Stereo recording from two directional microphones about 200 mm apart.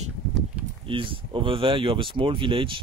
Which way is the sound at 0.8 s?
25° right (ahead or behind).